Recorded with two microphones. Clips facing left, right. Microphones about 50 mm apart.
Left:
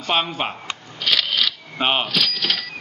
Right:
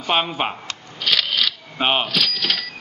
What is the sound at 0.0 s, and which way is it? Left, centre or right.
Speech, centre.